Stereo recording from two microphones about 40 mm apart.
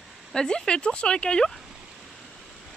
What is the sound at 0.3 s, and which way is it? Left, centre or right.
Speech, centre.